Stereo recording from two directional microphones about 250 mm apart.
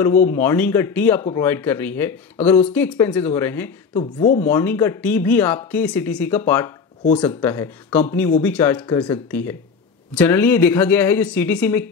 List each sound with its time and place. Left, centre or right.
0.3 s speech: centre
3.9 s speech: left
4.5 s speech: centre
8.8 s speech: centre
9.1 s speech: centre